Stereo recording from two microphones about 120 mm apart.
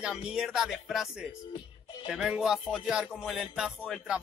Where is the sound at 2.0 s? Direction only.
5° right (ahead or behind).